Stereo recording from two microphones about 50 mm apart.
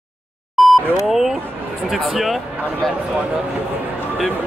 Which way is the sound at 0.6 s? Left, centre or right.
Centre.